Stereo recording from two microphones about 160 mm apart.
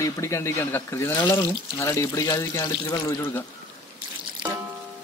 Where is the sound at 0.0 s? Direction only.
20° left (ahead or behind).